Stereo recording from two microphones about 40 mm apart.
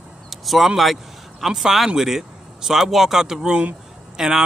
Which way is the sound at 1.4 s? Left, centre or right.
Centre.